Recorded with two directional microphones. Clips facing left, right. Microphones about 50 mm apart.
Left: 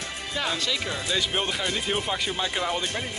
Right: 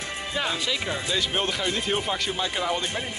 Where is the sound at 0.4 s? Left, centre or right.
Centre.